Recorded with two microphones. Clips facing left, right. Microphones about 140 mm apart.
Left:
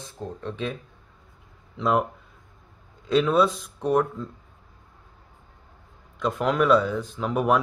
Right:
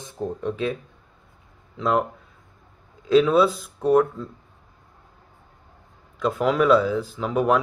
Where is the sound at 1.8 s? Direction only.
Centre (ahead or behind).